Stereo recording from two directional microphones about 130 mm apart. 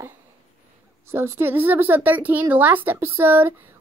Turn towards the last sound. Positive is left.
turn(degrees=-15)  # may be behind; listen again after turning